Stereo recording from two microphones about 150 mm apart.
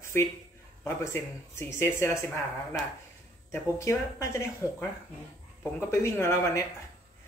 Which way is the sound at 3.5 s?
20° left (ahead or behind).